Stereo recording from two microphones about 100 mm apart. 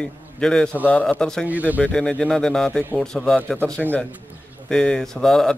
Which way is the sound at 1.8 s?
10° left (ahead or behind).